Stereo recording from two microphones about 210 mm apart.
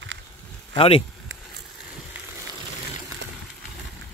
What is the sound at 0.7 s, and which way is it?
Speech, 25° left (ahead or behind).